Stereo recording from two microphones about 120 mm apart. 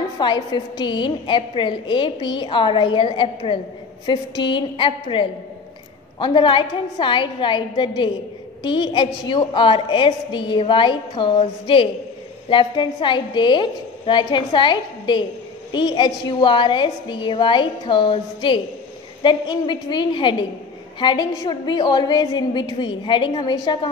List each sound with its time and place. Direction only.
0.2 s a woman's voice: 40° left (ahead or behind)